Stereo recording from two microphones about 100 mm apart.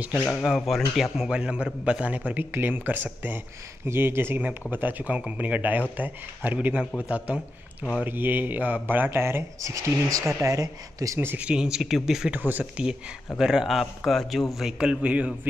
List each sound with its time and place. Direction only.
0.6 s a man's voice: centre (ahead or behind); by 7.3 s 15° right (ahead or behind)
7.3 s speech: 20° left (ahead or behind)
8.0 s speech: 20° right (ahead or behind)
11.3 s a man's voice: 10° right (ahead or behind)
12.4 s a man's voice: 15° right (ahead or behind)
13.4 s a man's voice: 5° right (ahead or behind)